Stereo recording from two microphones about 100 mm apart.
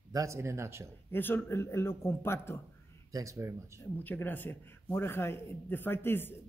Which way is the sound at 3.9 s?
20° left (ahead or behind).